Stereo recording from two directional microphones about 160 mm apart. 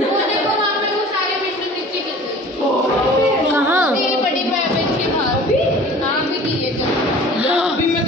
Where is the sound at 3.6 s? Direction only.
15° right (ahead or behind).